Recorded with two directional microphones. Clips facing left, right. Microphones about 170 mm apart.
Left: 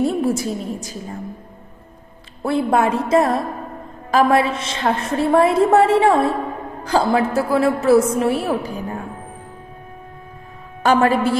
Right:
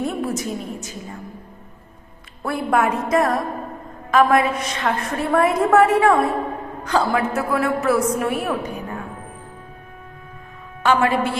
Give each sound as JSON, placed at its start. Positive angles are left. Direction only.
{"t": 0.0, "sound": "a woman's voice", "side_deg": 30}
{"t": 2.4, "sound": "a woman's voice", "side_deg": 25}
{"t": 10.8, "sound": "a woman's voice", "side_deg": 40}